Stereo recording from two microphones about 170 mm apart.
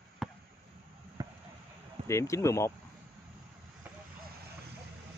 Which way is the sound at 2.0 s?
15° left (ahead or behind).